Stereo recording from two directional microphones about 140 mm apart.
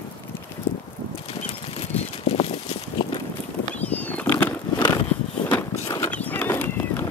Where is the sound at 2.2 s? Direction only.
45° left (ahead or behind).